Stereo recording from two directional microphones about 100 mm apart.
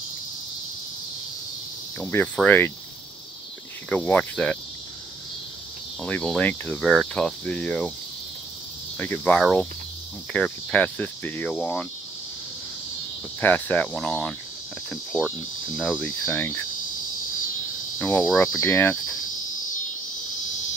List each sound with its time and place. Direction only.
2.0 s speech: 20° left (ahead or behind)
2.3 s cricket: 20° left (ahead or behind)
3.9 s cricket: 15° left (ahead or behind)
6.0 s cricket: 10° left (ahead or behind)
6.8 s cricket: centre (ahead or behind)
8.9 s cricket: 20° left (ahead or behind)
9.4 s speech: centre (ahead or behind)
10.3 s cricket: 10° left (ahead or behind)
13.4 s cricket: 15° left (ahead or behind)
16.0 s speech: 20° left (ahead or behind)
17.9 s cricket: 20° left (ahead or behind)
18.4 s speech: 25° left (ahead or behind)